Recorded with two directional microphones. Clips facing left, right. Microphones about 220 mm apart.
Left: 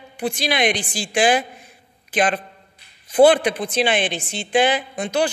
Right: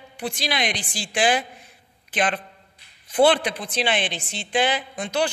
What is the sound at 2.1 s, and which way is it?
Speech, 40° left (ahead or behind).